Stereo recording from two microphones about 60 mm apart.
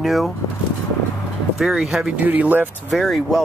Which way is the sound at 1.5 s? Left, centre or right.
Centre.